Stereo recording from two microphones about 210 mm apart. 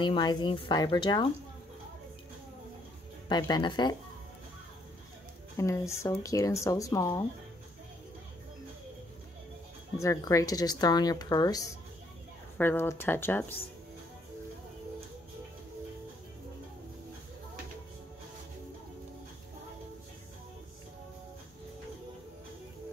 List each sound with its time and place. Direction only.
0.0 s speech: 20° left (ahead or behind)
3.3 s speech: 20° left (ahead or behind)
5.6 s speech: 15° left (ahead or behind)
9.9 s speech: 15° left (ahead or behind)